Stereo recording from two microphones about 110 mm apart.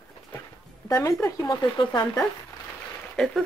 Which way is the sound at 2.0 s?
10° left (ahead or behind).